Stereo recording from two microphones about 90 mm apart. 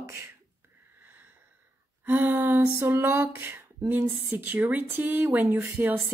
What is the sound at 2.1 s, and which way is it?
Speech, 25° right (ahead or behind).